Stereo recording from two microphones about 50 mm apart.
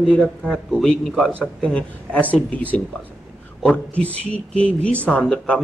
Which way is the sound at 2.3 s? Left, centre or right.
Left.